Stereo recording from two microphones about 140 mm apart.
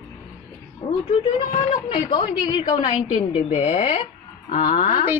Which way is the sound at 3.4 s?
50° left (ahead or behind).